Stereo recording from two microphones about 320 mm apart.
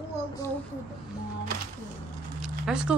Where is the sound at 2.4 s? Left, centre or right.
Centre.